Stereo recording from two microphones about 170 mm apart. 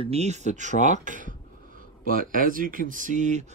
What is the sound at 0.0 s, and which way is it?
Speech, 40° right (ahead or behind).